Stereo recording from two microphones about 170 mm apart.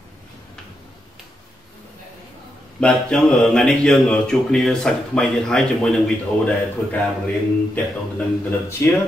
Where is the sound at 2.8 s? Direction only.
5° left (ahead or behind).